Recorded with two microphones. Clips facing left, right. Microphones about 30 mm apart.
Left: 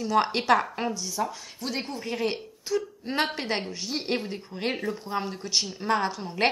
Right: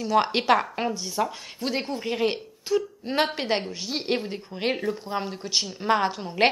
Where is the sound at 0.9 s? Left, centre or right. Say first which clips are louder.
Right 3 dB; right.